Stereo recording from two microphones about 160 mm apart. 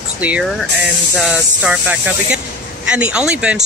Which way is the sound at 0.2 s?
10° right (ahead or behind).